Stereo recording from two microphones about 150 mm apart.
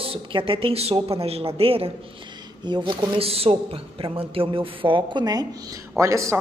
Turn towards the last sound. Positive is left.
turn(degrees=-20)  # may be behind; listen again after turning